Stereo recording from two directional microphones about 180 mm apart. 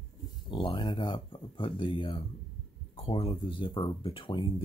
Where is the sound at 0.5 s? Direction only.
25° left (ahead or behind).